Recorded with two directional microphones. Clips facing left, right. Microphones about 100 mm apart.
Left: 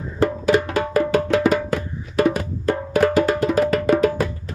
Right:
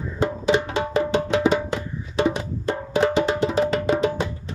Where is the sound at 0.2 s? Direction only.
20° right (ahead or behind).